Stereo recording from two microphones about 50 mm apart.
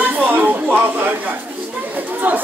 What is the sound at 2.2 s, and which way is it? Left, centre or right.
Speech, right.